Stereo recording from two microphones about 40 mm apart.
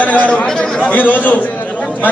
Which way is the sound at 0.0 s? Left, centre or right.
Left.